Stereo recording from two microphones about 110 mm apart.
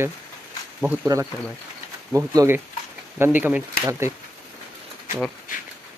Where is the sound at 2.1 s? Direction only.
25° right (ahead or behind).